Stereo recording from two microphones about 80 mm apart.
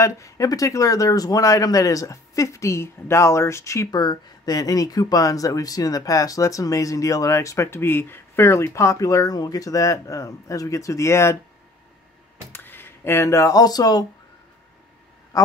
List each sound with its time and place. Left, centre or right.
0.0 s speech: left
3.9 s speech: left
12.5 s speech: left
15.3 s quack: left